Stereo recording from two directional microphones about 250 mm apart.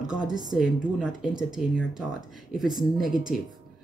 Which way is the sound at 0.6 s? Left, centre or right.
Centre.